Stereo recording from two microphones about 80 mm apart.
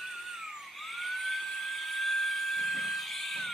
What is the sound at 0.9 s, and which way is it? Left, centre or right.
Dental drill, centre.